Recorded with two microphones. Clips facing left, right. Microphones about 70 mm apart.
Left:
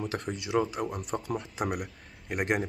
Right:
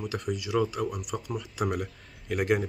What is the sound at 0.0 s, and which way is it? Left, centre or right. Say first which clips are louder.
Speech: right 1 dB; left.